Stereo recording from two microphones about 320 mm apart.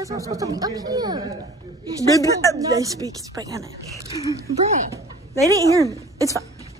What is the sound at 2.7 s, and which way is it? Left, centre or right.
Speech, centre.